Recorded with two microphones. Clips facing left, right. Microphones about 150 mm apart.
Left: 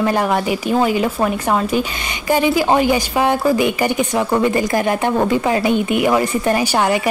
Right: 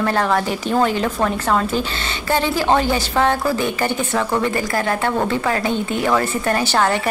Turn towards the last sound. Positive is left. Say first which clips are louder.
# left 2 dB
turn(degrees=10)  # may be behind; listen again after turning